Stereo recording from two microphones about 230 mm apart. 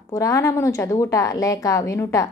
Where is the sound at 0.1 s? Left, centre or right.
Centre.